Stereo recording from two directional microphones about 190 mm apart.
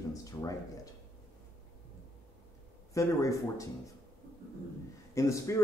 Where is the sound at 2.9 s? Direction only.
15° left (ahead or behind).